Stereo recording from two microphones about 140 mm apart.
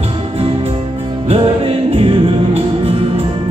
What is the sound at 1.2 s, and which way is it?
Music, 45° right (ahead or behind).